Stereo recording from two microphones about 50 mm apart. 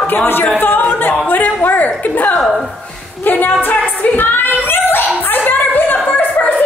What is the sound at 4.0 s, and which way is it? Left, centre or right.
Singing, left.